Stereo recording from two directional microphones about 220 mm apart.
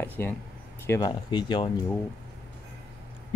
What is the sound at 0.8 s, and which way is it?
Speech, 15° left (ahead or behind).